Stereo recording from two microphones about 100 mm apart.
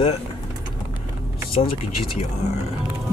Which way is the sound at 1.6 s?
90° left.